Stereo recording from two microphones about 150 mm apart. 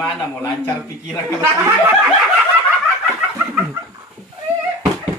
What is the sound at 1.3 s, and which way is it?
Speech, 15° right (ahead or behind).